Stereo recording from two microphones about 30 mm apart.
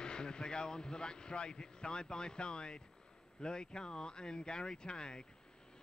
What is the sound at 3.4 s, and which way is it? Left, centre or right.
Speech, left.